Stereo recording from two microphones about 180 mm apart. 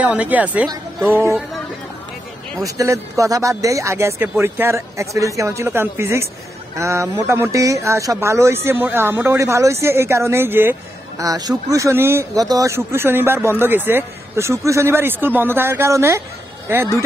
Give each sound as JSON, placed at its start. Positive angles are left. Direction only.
{"t": 0.0, "sound": "speech", "side_deg": -10}
{"t": 2.6, "sound": "speech", "side_deg": -15}